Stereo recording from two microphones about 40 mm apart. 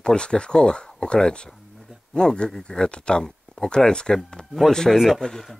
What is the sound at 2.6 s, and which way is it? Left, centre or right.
Speech, left.